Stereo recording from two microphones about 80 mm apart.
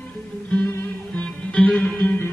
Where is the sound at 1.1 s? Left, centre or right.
Centre.